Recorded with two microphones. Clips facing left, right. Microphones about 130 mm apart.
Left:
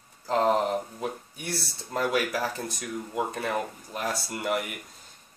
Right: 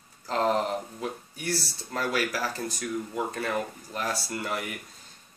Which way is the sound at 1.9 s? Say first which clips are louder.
Left 2 dB; 20° left (ahead or behind).